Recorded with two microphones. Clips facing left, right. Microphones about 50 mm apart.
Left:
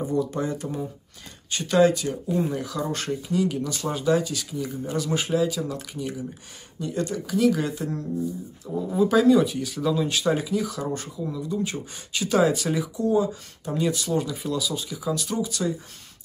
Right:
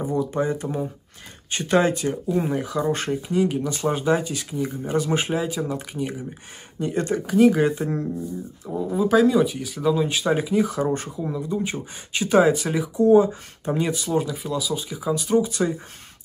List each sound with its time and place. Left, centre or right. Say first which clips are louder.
0.0 s speech: right 2 dB; right
8.6 s speech: even; centre
12.9 s speech: right 10 dB; right
13.9 s speech: right 2 dB; centre; by 15.7 s right